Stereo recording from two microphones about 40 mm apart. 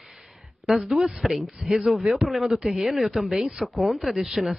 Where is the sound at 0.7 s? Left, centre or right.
Centre.